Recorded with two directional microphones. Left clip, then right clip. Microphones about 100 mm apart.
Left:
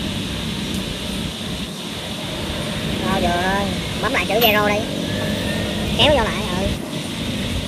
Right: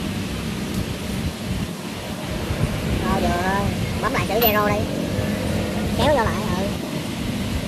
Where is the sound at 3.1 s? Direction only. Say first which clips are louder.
Left 2 dB; 5° left (ahead or behind).